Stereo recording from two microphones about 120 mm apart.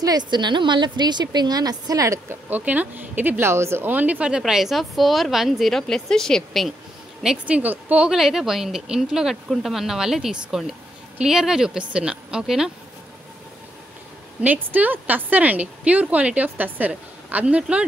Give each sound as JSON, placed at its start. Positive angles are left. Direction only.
{"t": 0.3, "sound": "a woman's voice", "side_deg": -40}
{"t": 2.5, "sound": "a woman's voice", "side_deg": -15}
{"t": 7.2, "sound": "a woman's voice", "side_deg": -10}
{"t": 14.4, "sound": "speech", "side_deg": -15}